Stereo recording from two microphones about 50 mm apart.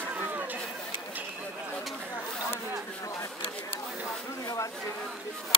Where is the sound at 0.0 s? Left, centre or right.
Right.